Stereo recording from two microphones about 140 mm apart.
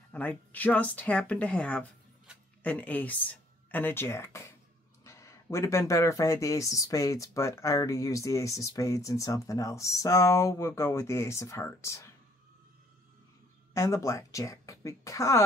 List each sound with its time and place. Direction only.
0.1 s speech: 10° left (ahead or behind)
2.3 s a sound: 5° right (ahead or behind)
2.6 s speech: 10° left (ahead or behind)
13.7 s speech: 20° left (ahead or behind)